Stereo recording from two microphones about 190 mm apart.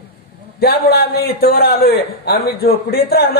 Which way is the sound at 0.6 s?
55° left (ahead or behind).